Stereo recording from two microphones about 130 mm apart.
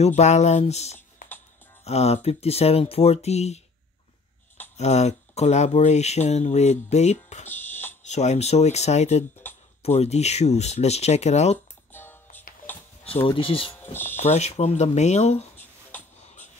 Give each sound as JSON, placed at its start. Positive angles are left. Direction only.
{"t": 0.0, "sound": "speech", "side_deg": 60}
{"t": 4.7, "sound": "speech", "side_deg": 60}
{"t": 7.4, "sound": "music", "side_deg": 15}
{"t": 8.0, "sound": "speech", "side_deg": 60}
{"t": 11.5, "sound": "music", "side_deg": 15}
{"t": 13.0, "sound": "speech", "side_deg": 45}
{"t": 14.1, "sound": "speech", "side_deg": 60}